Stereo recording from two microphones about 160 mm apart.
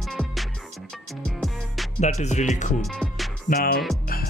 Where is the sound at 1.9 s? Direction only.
45° left (ahead or behind).